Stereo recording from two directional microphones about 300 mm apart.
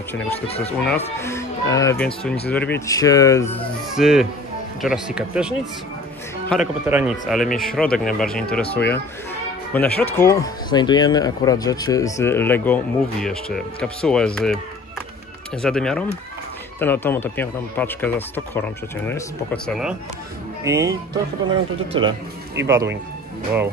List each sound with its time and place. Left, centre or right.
1.2 s speech: centre
3.9 s speech: centre